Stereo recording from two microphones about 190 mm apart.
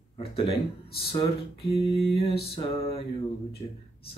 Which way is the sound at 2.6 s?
30° left (ahead or behind).